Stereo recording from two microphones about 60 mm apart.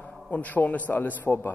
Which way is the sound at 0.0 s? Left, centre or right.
Left.